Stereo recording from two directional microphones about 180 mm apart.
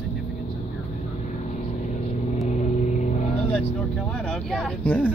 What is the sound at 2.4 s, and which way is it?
Vehicle, 40° left (ahead or behind).